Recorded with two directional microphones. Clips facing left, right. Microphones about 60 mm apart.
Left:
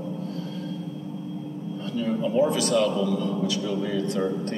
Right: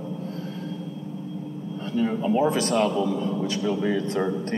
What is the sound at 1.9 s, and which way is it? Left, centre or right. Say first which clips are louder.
A man's voice: right 1 dB; right.